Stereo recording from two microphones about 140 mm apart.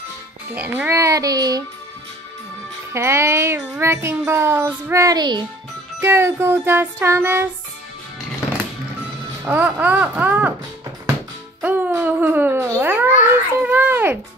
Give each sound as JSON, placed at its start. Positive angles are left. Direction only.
{"t": 0.6, "sound": "speech", "side_deg": -15}
{"t": 2.9, "sound": "speech", "side_deg": -20}
{"t": 5.9, "sound": "music", "side_deg": -20}
{"t": 9.4, "sound": "music", "side_deg": -15}
{"t": 11.6, "sound": "a child's voice", "side_deg": -10}
{"t": 13.6, "sound": "music", "side_deg": -15}